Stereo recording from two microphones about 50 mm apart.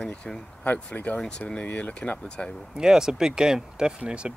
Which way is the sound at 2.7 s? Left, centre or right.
Centre.